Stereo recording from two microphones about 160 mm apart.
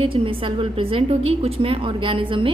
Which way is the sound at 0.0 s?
35° right (ahead or behind).